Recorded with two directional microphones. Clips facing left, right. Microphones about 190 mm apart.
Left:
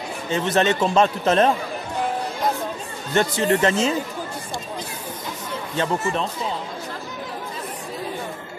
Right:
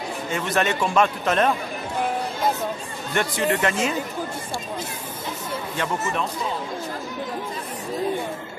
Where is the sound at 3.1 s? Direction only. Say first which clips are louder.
Left 3 dB; 35° left (ahead or behind).